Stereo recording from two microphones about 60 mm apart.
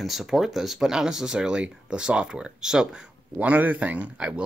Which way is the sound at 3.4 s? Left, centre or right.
Right.